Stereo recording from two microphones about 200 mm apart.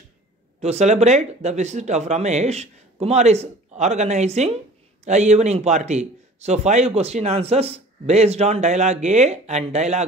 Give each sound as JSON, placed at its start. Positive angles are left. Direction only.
{"t": 0.6, "sound": "a man's voice", "side_deg": -35}